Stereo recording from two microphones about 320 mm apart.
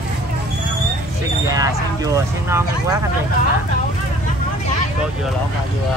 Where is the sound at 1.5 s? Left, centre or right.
Centre.